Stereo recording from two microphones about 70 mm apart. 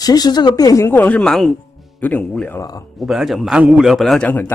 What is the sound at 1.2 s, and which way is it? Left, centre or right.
Speech, centre.